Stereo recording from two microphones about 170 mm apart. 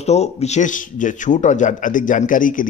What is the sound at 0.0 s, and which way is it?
A man's voice, 40° left (ahead or behind).